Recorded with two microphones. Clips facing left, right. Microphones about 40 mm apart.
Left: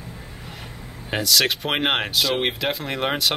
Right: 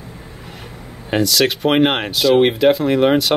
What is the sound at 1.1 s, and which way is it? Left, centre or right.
Speech, centre.